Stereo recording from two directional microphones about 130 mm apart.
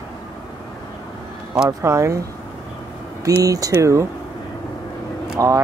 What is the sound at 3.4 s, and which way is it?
Speech, 25° right (ahead or behind).